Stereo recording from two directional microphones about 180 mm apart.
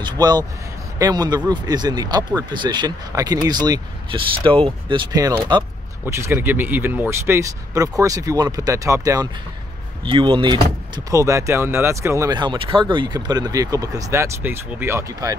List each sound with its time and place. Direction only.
0.0 s speech: 20° right (ahead or behind)